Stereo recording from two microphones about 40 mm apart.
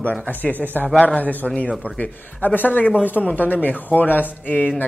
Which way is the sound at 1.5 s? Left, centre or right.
Left.